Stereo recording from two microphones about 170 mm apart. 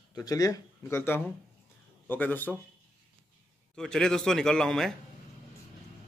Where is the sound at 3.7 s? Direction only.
5° left (ahead or behind).